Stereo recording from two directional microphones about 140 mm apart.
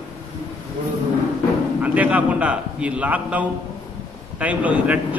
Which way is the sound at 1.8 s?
10° right (ahead or behind).